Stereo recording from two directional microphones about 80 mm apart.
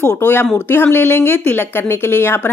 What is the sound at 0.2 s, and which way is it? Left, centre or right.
Speech, left.